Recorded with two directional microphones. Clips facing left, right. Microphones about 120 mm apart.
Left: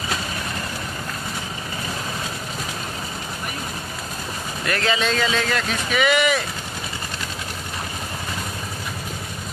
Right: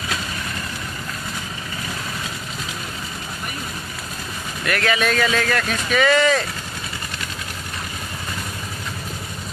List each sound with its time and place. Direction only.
4.6 s speech: 25° left (ahead or behind)